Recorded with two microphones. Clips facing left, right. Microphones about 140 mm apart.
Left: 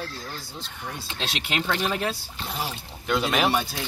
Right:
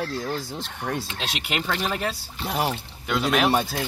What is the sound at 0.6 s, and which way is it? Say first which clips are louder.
Speech: right 7 dB; 75° right (ahead or behind).